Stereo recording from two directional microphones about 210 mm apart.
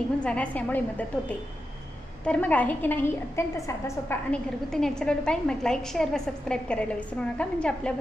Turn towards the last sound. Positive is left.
turn(degrees=5)  # may be behind; listen again after turning